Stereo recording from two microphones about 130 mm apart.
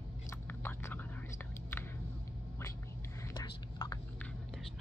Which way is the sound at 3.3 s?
30° left (ahead or behind).